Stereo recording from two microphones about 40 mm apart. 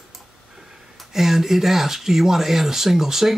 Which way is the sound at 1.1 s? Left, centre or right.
Centre.